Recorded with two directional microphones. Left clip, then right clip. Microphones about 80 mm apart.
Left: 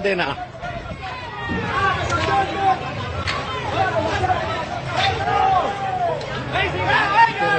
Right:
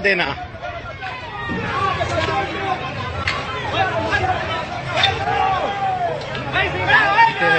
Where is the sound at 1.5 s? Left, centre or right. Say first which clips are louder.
Left 1 dB; centre.